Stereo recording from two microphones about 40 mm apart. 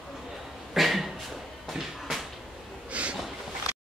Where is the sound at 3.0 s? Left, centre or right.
Right.